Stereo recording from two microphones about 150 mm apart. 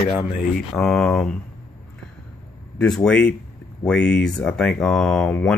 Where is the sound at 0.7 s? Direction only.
5° left (ahead or behind).